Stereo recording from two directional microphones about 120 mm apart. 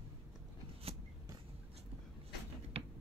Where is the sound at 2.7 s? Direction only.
55° right (ahead or behind).